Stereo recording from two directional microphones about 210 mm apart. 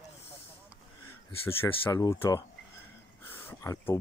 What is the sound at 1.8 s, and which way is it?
Speech, 15° left (ahead or behind).